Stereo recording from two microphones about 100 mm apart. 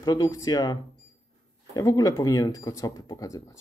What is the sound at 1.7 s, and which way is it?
Speech, 35° left (ahead or behind).